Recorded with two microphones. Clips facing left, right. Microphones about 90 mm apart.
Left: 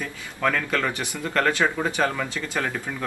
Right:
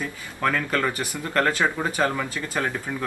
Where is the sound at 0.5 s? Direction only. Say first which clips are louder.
Right 1 dB; 15° right (ahead or behind).